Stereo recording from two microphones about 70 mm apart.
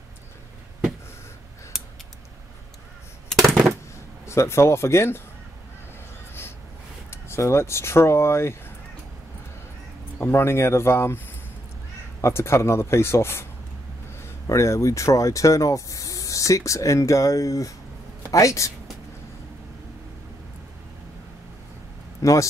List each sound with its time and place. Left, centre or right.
1.7 s scissors: centre
3.3 s a sound: centre
4.3 s speech: left
7.1 s speech: left
10.1 s speech: left
12.2 s speech: left
14.5 s speech: left
22.2 s speech: left